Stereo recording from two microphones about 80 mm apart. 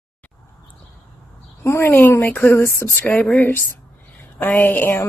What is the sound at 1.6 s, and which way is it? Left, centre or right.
A woman's voice, left.